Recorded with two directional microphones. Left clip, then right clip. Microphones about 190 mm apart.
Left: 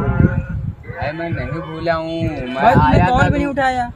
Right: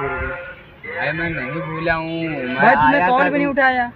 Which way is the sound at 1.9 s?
10° left (ahead or behind).